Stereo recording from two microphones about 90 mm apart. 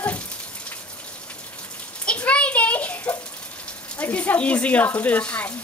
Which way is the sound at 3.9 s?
15° left (ahead or behind).